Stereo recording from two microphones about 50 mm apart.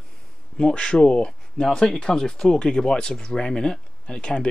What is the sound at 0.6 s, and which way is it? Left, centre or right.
Speech, centre.